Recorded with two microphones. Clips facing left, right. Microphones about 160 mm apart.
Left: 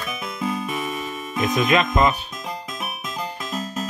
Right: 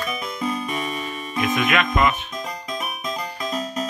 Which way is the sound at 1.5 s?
35° left (ahead or behind).